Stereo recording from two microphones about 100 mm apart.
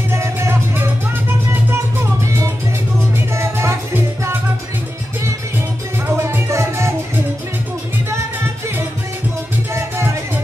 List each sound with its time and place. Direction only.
0.1 s music: 25° right (ahead or behind)
3.3 s music: 25° right (ahead or behind)
6.0 s music: 25° right (ahead or behind)
9.7 s music: 25° right (ahead or behind)